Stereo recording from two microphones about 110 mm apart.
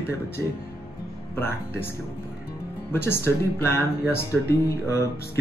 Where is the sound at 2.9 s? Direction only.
20° left (ahead or behind).